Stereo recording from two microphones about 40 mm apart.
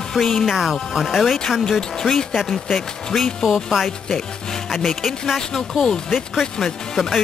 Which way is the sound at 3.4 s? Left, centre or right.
Centre.